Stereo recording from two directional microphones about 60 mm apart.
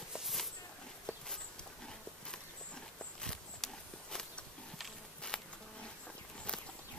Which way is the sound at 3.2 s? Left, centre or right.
Centre.